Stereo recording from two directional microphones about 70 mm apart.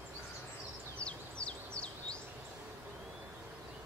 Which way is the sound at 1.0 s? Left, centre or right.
Centre.